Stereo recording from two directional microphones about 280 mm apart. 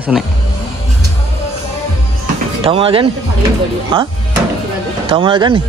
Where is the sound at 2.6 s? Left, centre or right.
Centre.